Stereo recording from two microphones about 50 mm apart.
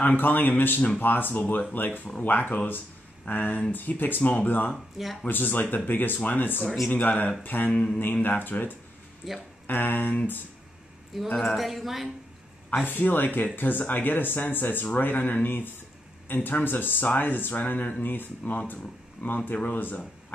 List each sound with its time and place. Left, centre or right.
0.0 s speech: left
4.9 s speech: centre
5.2 s speech: left
7.7 s speech: centre
8.2 s speech: left
9.2 s speech: centre
9.7 s speech: left
11.3 s speech: centre
12.8 s speech: left